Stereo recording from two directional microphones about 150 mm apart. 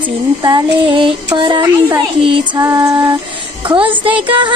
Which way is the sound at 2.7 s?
30° right (ahead or behind).